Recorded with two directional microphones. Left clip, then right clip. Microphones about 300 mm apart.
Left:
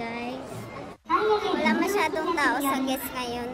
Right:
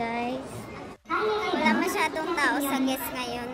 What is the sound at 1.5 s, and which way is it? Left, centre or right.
A woman's voice, centre.